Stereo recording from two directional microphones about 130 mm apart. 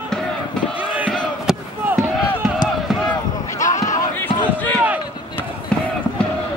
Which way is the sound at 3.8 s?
25° left (ahead or behind).